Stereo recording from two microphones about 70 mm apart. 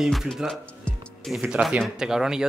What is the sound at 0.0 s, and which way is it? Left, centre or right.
Speech, centre.